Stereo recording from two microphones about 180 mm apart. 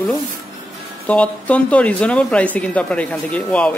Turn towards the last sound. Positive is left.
turn(degrees=5)  # may be behind; listen again after turning